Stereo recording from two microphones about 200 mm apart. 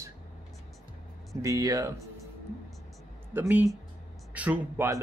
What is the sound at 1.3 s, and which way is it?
Speech, 15° right (ahead or behind).